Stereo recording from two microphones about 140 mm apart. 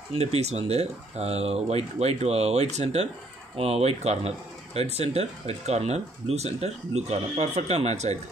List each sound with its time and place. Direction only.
0.1 s speech: 50° right (ahead or behind)